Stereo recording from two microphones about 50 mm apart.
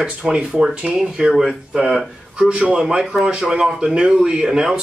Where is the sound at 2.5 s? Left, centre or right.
Right.